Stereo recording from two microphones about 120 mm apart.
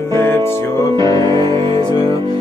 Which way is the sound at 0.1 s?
20° left (ahead or behind).